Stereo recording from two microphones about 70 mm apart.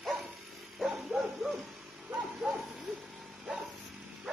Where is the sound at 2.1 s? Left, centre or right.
Centre.